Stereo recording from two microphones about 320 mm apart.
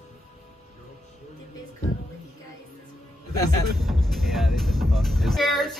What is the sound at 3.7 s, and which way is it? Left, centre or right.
Speech, centre.